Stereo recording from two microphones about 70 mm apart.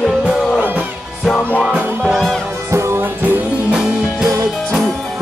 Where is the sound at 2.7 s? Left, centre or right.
Right.